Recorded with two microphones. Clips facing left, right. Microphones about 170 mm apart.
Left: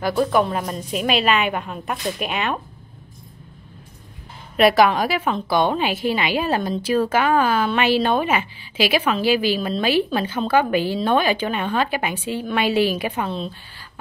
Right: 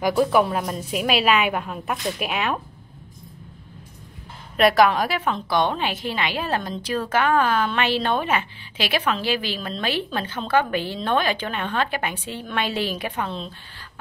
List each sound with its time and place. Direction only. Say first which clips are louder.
0.0 s a woman's voice: even; 10° right (ahead or behind)
4.6 s a woman's voice: left 2 dB; 5° left (ahead or behind)